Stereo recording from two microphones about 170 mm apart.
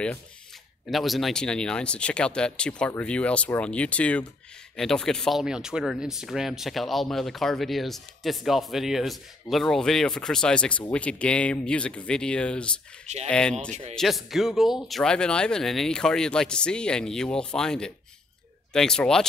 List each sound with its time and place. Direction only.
0.8 s speech: centre (ahead or behind)
13.0 s speech: 40° right (ahead or behind)
13.3 s speech: 5° left (ahead or behind)